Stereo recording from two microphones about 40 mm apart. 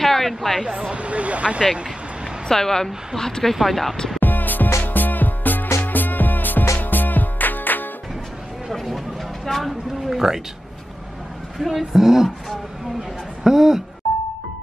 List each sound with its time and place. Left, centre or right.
0.0 s a sound: centre
0.9 s speech: right
2.4 s a woman's voice: centre
3.5 s speech: centre
4.2 s music: left
8.7 s a sound: centre
10.1 s speech: centre
11.7 s speech: centre
13.4 s speech: centre